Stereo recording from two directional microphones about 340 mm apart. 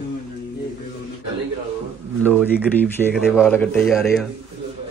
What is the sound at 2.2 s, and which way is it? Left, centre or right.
Speech, centre.